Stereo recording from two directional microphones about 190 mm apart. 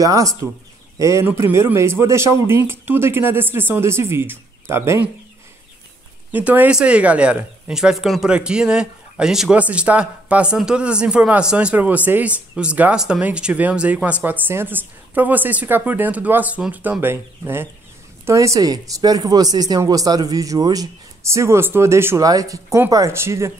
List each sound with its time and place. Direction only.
0.0 s speech: 20° right (ahead or behind)
6.3 s speech: 10° right (ahead or behind)